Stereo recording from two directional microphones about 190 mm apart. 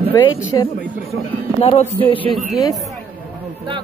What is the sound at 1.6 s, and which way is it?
Speech, 30° left (ahead or behind).